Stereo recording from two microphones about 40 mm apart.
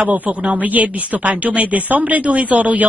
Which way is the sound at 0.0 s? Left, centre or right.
Right.